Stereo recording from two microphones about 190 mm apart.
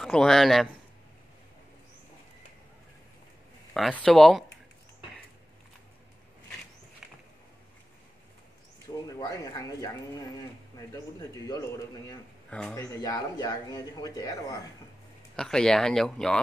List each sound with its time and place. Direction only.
0.0 s speech: 5° left (ahead or behind)
3.7 s speech: centre (ahead or behind)
9.0 s speech: 20° left (ahead or behind)
10.9 s speech: 15° left (ahead or behind)
12.4 s speech: 5° left (ahead or behind)
15.3 s speech: 5° left (ahead or behind)